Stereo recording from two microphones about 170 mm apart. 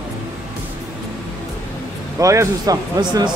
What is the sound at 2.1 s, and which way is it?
Speech, 15° right (ahead or behind).